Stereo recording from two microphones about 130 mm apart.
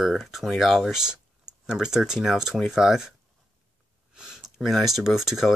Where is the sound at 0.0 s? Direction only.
Centre (ahead or behind).